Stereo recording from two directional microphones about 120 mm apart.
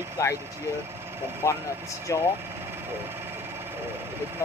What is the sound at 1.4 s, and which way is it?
Speech, 25° left (ahead or behind).